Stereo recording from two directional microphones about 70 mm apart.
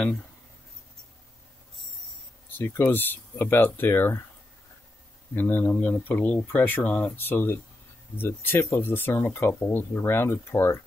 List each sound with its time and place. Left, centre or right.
2.5 s speech: left
5.3 s speech: left